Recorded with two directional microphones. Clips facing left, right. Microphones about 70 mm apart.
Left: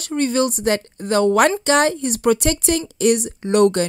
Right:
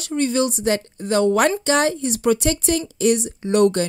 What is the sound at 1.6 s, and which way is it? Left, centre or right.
Speech, left.